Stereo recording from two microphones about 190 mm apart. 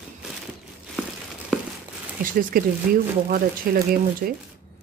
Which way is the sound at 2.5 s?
50° right (ahead or behind).